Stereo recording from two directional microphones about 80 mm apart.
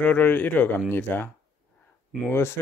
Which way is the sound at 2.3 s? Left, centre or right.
Left.